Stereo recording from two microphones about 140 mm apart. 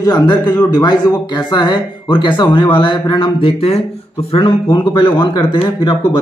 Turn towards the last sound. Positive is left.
turn(degrees=35)  # may be behind; listen again after turning